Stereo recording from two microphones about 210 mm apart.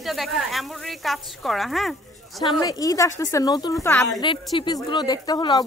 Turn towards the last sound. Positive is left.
turn(degrees=20)  # may be behind; listen again after turning